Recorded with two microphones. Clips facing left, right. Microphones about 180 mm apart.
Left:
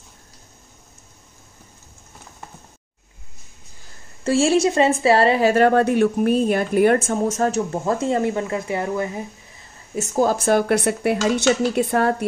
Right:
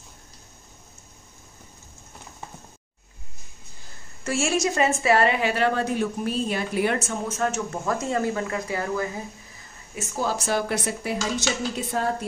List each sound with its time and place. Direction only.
4.2 s speech: 30° left (ahead or behind)
9.9 s speech: 45° left (ahead or behind); by 12.3 s 65° left (ahead or behind)